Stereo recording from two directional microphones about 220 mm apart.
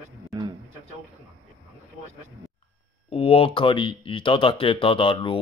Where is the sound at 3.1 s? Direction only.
25° left (ahead or behind).